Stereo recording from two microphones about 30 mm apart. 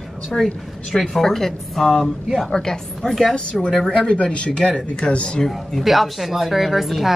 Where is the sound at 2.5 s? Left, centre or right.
Left.